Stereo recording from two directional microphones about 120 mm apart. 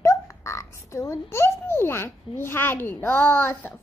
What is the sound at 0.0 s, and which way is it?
A child's voice, 25° left (ahead or behind).